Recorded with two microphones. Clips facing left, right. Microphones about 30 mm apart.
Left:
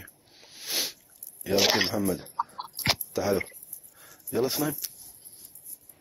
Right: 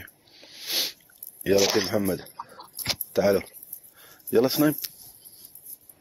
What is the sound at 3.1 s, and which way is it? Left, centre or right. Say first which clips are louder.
Speech: right 8 dB; right.